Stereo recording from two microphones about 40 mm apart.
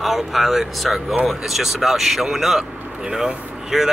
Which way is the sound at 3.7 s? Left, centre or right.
Centre.